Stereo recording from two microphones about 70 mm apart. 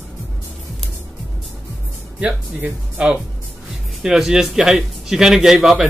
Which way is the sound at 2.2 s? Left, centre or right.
Centre.